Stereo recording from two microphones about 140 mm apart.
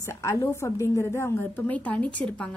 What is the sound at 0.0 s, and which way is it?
A woman's voice, 20° left (ahead or behind).